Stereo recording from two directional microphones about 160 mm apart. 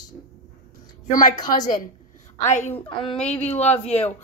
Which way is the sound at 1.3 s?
25° left (ahead or behind).